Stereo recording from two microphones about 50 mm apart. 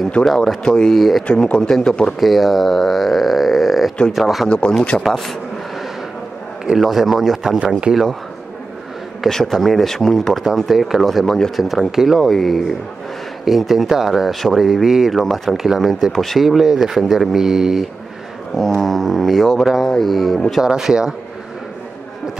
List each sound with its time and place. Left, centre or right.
0.2 s speech: centre
1.2 s speech: left
2.1 s speech: centre
4.5 s speech: left
4.9 s speech: centre
6.6 s speech: centre
9.3 s speech: centre
11.5 s speech: centre
12.2 s speech: centre
16.4 s speech: centre
18.6 s speech: centre
20.6 s speech: centre